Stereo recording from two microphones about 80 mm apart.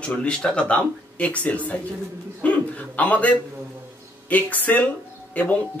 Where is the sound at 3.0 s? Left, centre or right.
Centre.